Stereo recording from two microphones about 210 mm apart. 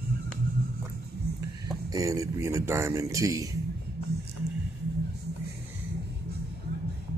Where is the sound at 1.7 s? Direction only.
15° right (ahead or behind).